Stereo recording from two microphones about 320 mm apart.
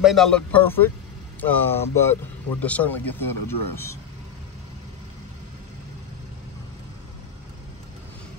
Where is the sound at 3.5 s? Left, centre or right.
Left.